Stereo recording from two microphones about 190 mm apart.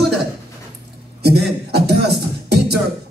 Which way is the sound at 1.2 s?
60° right (ahead or behind).